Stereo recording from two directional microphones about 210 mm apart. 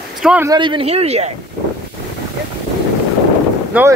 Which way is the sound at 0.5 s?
20° right (ahead or behind).